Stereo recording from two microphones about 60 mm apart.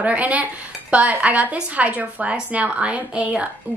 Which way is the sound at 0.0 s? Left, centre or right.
Right.